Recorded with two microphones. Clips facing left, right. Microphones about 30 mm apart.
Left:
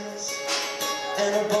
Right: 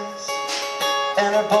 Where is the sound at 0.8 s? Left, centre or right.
Right.